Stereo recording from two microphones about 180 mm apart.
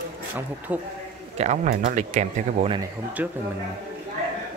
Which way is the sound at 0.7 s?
10° right (ahead or behind).